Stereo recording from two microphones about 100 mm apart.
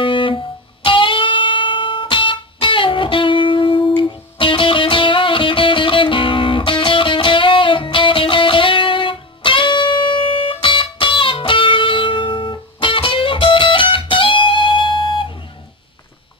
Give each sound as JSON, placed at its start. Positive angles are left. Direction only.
{"t": 0.0, "sound": "music", "side_deg": 60}